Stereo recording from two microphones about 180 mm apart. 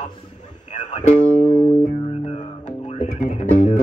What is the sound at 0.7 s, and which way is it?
Music, 40° left (ahead or behind).